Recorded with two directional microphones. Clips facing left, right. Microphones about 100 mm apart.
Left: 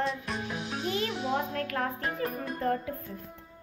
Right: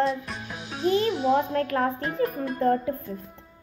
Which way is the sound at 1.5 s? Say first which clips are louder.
Right 7 dB; 30° right (ahead or behind).